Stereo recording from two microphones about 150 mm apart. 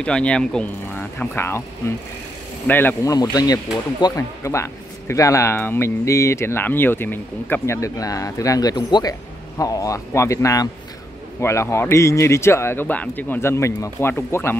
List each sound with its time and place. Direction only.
0.0 s speech: 5° left (ahead or behind)
2.6 s speech: 15° left (ahead or behind)